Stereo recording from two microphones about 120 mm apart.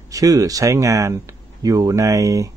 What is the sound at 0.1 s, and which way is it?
Speech, 30° right (ahead or behind).